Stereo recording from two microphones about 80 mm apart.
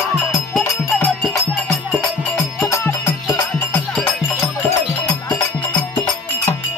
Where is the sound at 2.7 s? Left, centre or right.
Left.